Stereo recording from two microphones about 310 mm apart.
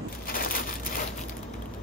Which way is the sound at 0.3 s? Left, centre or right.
Left.